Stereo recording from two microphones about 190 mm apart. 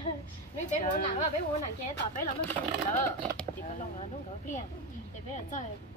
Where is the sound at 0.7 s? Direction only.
45° left (ahead or behind).